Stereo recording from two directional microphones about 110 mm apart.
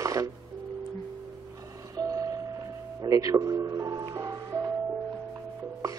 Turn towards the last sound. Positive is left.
turn(degrees=-35)  # may be behind; listen again after turning